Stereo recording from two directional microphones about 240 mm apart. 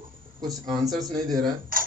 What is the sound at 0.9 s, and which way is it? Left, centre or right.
Speech, centre.